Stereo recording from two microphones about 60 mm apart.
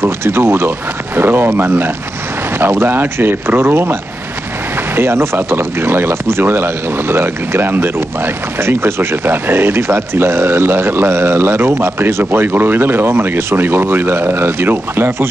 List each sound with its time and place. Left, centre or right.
0.0 s speech: right